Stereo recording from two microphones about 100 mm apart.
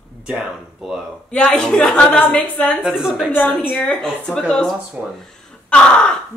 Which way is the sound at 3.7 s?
10° left (ahead or behind).